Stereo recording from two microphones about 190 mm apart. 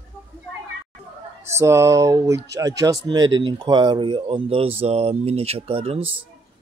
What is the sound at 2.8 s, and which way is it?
Mantra, 20° right (ahead or behind).